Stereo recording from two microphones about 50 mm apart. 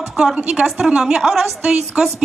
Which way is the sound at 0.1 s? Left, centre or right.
Centre.